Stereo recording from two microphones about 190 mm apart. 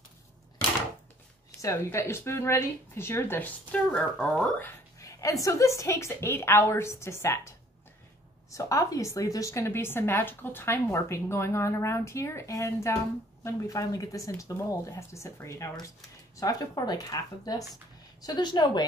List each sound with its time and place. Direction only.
1.6 s a woman's voice: 15° left (ahead or behind)